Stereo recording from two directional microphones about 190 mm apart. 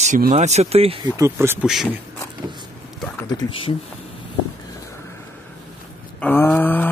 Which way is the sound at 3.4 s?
30° left (ahead or behind).